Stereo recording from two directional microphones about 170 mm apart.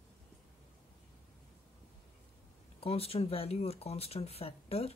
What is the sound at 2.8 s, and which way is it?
Speech, 35° left (ahead or behind).